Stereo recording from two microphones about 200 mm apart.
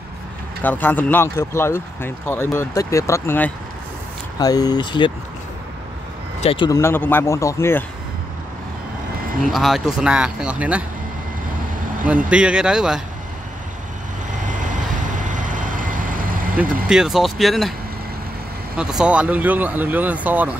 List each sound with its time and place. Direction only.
0.6 s speech: 10° left (ahead or behind)
6.4 s speech: 25° left (ahead or behind)
6.8 s speech: 10° left (ahead or behind)
9.5 s speech: centre (ahead or behind)
12.3 s speech: 5° right (ahead or behind)
15.1 s vehicle: 40° right (ahead or behind)
16.8 s speech: 5° right (ahead or behind)
18.8 s speech: 5° right (ahead or behind)